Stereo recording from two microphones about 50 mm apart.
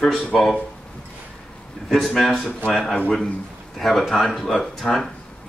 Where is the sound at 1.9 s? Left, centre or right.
Centre.